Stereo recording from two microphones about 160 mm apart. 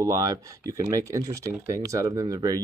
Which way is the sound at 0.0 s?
20° right (ahead or behind).